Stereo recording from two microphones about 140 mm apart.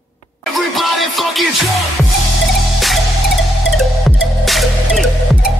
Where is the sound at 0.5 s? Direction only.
Centre (ahead or behind).